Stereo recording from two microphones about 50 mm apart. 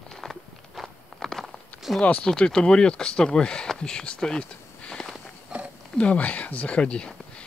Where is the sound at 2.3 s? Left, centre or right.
Centre.